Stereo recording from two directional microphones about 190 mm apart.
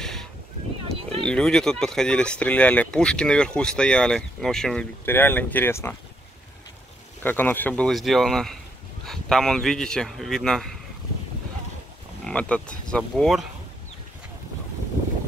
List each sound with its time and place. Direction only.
0.0 s a sound: 5° left (ahead or behind)
1.2 s speech: 5° left (ahead or behind)
7.2 s speech: 10° left (ahead or behind)
12.3 s speech: 5° left (ahead or behind)